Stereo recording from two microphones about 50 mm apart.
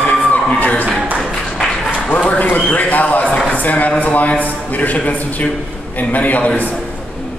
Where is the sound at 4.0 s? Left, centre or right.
Left.